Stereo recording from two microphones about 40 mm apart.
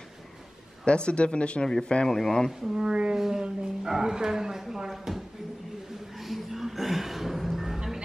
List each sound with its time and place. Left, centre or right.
0.8 s speech: left
2.0 s a man's voice: centre
2.6 s speech: centre
3.2 s speech: centre
6.1 s music: centre